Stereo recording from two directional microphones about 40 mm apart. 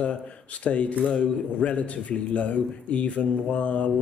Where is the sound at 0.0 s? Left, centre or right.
Left.